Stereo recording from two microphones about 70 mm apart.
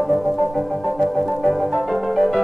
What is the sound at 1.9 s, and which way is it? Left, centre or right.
Music, centre.